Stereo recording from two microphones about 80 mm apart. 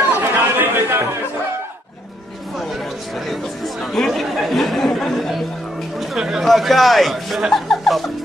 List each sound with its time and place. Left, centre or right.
0.2 s chatter: right
3.3 s chatter: centre
5.9 s speech: centre